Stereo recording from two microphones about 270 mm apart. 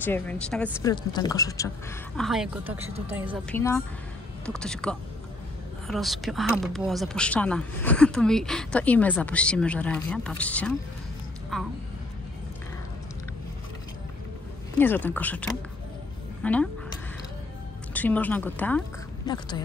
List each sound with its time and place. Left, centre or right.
0.0 s speech: centre
0.9 s speech: centre
2.1 s a woman's voice: centre
3.4 s speech: centre
14.8 s speech: centre
17.9 s speech: centre
19.2 s speech: centre